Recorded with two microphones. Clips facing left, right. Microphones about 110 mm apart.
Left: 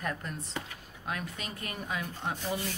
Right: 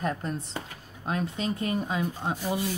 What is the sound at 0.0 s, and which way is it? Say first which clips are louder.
Speech: right 6 dB; 30° right (ahead or behind).